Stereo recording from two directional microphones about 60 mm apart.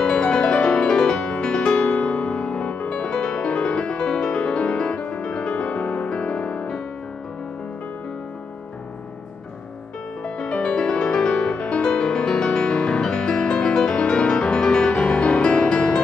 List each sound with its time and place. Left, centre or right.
0.0 s music: centre
10.2 s music: centre